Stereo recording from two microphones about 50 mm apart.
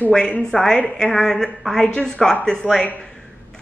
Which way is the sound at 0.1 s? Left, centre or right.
Centre.